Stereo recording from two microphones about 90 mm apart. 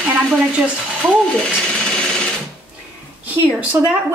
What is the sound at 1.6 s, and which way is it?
Sewing machine, 10° left (ahead or behind).